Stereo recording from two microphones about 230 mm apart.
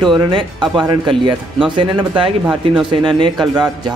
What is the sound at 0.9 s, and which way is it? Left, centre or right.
A man's voice, right.